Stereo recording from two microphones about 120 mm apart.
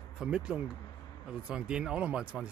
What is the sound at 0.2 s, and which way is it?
Speech, 10° right (ahead or behind).